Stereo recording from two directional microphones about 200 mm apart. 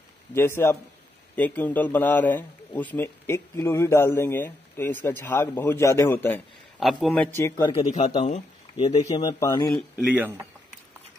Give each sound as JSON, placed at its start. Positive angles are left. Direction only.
{"t": 0.3, "sound": "a man's voice", "side_deg": 10}
{"t": 6.8, "sound": "a man's voice", "side_deg": 0}
{"t": 7.3, "sound": "a man's voice", "side_deg": 15}
{"t": 8.2, "sound": "speech", "side_deg": 30}
{"t": 9.9, "sound": "speech", "side_deg": -5}